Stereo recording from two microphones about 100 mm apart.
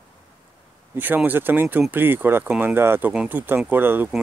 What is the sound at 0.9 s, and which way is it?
Speech, 20° right (ahead or behind).